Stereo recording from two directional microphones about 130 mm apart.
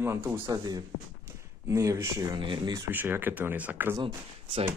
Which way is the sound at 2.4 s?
35° right (ahead or behind).